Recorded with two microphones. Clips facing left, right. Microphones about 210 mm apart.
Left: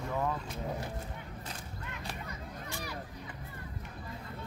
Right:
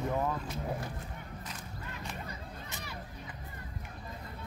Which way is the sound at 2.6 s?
20° right (ahead or behind).